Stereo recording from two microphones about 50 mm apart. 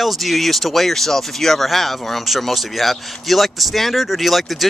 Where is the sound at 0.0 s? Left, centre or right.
Centre.